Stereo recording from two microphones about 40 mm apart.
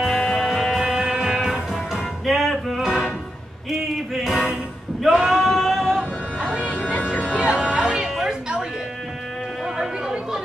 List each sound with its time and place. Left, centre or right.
0.1 s music: centre
0.8 s music: centre
1.7 s music: centre
5.0 s singing: centre
5.9 s music: right